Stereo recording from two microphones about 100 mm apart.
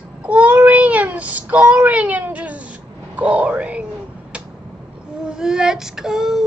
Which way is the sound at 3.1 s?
10° right (ahead or behind).